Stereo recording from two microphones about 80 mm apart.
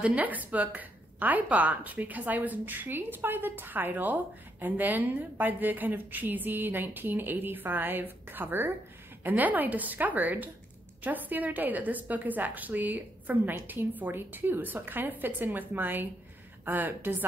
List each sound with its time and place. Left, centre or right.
0.0 s a woman's voice: centre